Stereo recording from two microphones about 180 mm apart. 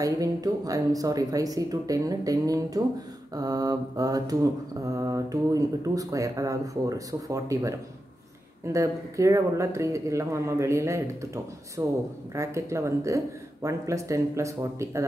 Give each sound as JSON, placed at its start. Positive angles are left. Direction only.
{"t": 0.0, "sound": "mantra", "side_deg": -20}
{"t": 8.7, "sound": "speech", "side_deg": -15}